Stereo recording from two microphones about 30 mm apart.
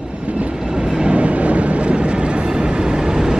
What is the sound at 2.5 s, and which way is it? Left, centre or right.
Train, right.